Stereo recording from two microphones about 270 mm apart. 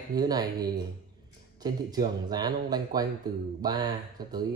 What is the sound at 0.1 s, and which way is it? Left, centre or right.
Speech, centre.